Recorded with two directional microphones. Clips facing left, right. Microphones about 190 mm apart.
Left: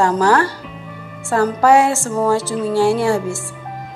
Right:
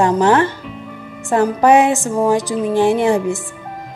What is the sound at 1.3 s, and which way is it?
Music, 20° right (ahead or behind).